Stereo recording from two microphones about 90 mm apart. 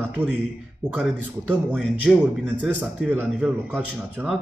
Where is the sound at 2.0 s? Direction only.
15° right (ahead or behind).